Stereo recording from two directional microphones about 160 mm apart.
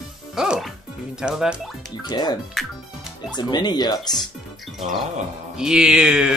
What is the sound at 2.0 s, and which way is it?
Speech, 25° left (ahead or behind).